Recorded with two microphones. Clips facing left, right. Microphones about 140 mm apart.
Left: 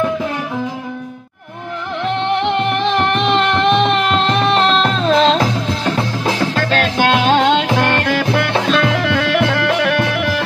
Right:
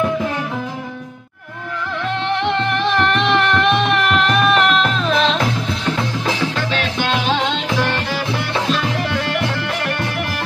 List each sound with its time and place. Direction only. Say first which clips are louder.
2.0 s music: left 3 dB; 20° left (ahead or behind); by 5.4 s 35° left (ahead or behind)
6.5 s music: left 5 dB; 45° left (ahead or behind); by 10.3 s 80° left